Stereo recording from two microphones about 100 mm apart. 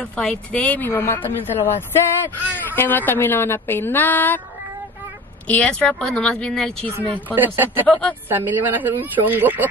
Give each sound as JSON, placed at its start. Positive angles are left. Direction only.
{"t": 0.2, "sound": "a woman's voice", "side_deg": 10}
{"t": 5.5, "sound": "speech", "side_deg": 15}
{"t": 7.3, "sound": "speech", "side_deg": -20}
{"t": 7.8, "sound": "speech", "side_deg": 10}
{"t": 8.3, "sound": "speech", "side_deg": -20}